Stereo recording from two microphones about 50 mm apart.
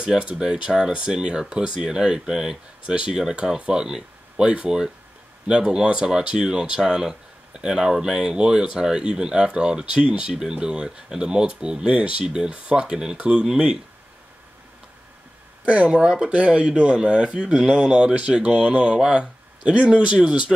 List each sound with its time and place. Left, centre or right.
0.0 s speech: centre
15.6 s speech: right